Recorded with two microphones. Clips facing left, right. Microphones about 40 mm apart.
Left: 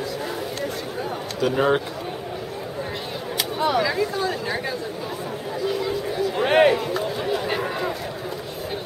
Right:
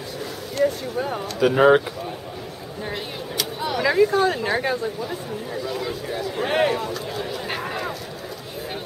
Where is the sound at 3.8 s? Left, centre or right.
Right.